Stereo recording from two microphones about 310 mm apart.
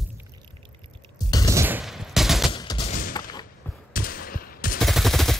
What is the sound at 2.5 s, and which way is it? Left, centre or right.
Fusillade, centre.